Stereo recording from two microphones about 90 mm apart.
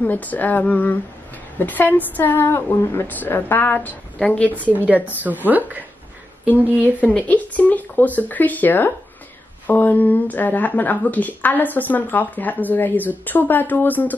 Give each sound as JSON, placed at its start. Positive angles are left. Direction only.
{"t": 0.0, "sound": "speech", "side_deg": 20}
{"t": 4.7, "sound": "speech", "side_deg": -15}
{"t": 7.1, "sound": "speech", "side_deg": 15}